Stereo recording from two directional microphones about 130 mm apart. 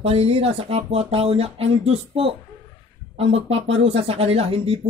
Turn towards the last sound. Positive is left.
turn(degrees=-50)  # may be behind; listen again after turning